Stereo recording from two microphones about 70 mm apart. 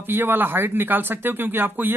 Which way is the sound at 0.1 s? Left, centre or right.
Right.